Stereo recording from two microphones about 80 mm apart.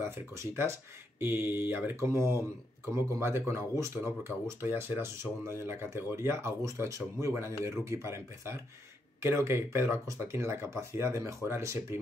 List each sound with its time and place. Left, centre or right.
0.0 s speech: right